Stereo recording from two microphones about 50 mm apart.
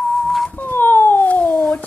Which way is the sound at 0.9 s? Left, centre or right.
Left.